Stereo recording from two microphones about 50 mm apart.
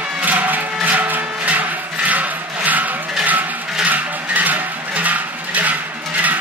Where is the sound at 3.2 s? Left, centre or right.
Right.